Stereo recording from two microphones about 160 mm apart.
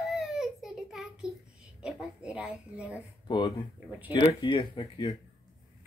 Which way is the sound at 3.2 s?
30° left (ahead or behind).